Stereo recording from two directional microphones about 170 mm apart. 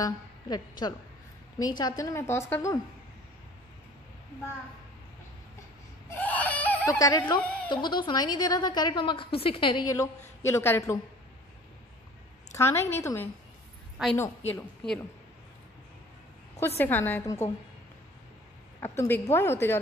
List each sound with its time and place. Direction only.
0.0 s a woman's voice: 25° left (ahead or behind)
6.0 s baby cry: 10° left (ahead or behind)
7.0 s a woman's voice: 20° left (ahead or behind)
12.5 s a woman's voice: 15° left (ahead or behind)
14.0 s a woman's voice: 5° right (ahead or behind)
16.5 s a woman's voice: 15° left (ahead or behind)
18.8 s a woman's voice: 10° left (ahead or behind)